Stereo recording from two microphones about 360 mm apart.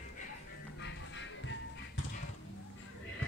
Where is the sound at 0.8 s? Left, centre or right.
Left.